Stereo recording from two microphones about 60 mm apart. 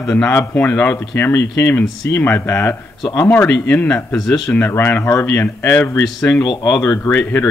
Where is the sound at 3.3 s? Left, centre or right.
Left.